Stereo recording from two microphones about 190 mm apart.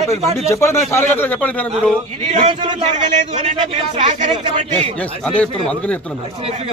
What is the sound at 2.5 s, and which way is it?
Speech, 35° right (ahead or behind).